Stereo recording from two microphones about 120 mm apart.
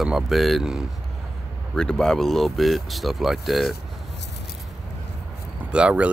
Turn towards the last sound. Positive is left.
turn(degrees=-10)  # may be behind; listen again after turning